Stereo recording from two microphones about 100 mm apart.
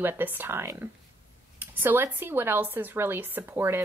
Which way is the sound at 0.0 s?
20° right (ahead or behind).